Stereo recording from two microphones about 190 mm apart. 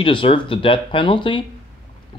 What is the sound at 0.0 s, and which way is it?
Speech, 25° left (ahead or behind).